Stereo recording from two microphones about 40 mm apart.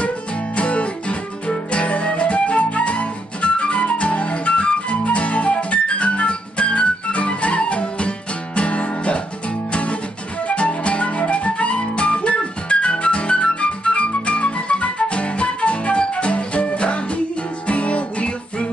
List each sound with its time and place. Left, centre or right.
0.6 s music: left
10.5 s flute: left
17.6 s music: left